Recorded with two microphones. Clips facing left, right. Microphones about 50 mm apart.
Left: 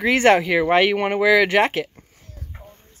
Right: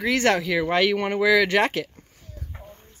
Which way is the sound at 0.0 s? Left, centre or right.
Left.